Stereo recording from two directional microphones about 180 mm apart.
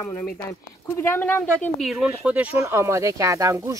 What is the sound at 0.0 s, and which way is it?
Speech, 10° left (ahead or behind).